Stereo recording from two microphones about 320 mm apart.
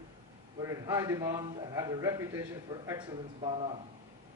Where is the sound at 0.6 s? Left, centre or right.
Centre.